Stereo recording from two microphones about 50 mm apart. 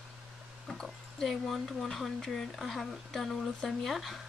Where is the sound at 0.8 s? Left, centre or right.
Centre.